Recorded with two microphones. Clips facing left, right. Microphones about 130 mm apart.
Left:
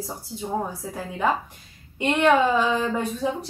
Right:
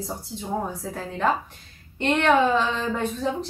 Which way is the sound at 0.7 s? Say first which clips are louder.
Right 1 dB; 10° left (ahead or behind).